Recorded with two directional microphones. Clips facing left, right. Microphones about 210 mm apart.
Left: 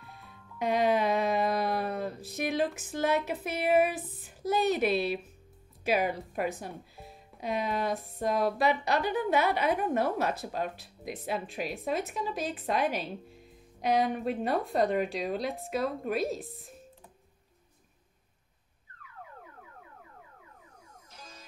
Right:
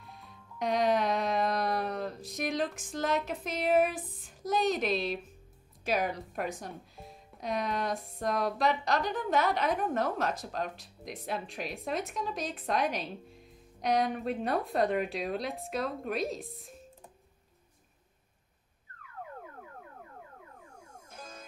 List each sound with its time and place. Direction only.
0.0 s music: 5° left (ahead or behind)
5.9 s speech: 5° left (ahead or behind)
19.6 s music: 50° right (ahead or behind)